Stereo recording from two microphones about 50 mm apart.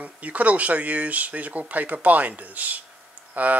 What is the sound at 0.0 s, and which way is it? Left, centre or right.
Speech, right.